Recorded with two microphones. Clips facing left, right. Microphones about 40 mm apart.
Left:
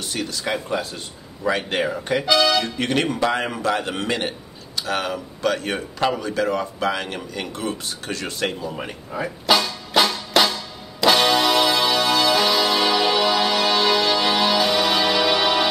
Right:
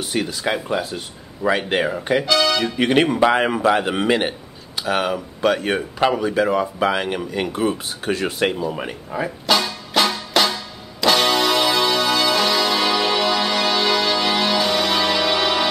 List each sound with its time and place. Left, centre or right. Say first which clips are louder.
0.0 s a man's voice: right 4 dB; centre
2.2 s speech: left 3 dB; centre
2.6 s a man's voice: right 5 dB; centre
9.5 s music: left 1 dB; centre